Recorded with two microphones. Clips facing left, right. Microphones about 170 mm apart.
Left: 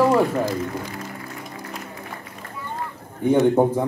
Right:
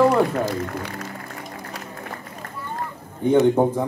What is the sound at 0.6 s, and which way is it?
Speech, 65° right (ahead or behind).